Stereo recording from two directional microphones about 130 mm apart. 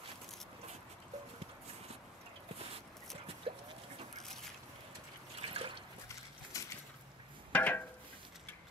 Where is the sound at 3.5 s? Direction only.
45° right (ahead or behind).